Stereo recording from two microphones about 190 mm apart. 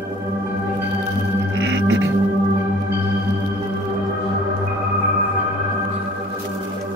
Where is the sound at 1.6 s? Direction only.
70° right (ahead or behind).